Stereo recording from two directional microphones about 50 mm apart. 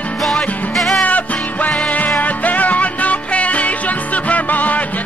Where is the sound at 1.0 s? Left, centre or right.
Left.